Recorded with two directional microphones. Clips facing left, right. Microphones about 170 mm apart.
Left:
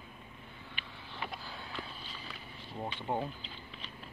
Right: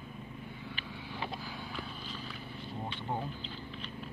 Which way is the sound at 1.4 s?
Centre (ahead or behind).